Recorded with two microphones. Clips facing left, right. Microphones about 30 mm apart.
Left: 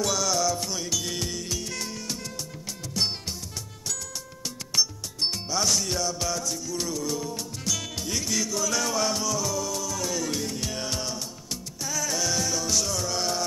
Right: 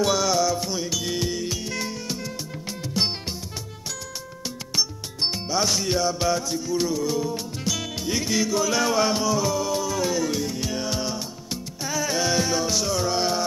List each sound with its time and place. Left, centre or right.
0.0 s music: right
5.2 s music: centre
10.2 s music: centre
11.8 s music: right